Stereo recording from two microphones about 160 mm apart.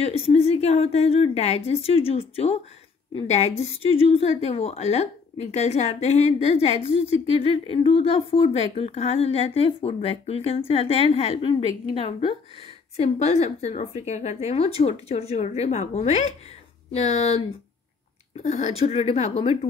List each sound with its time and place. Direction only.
0.0 s a woman's voice: 40° left (ahead or behind)
18.4 s a woman's voice: 45° left (ahead or behind)